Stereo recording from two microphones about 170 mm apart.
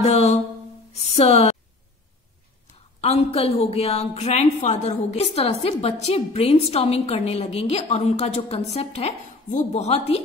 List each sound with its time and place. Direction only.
0.0 s music: 40° left (ahead or behind)
0.9 s a sound: 40° left (ahead or behind)
3.0 s a woman's voice: 35° left (ahead or behind)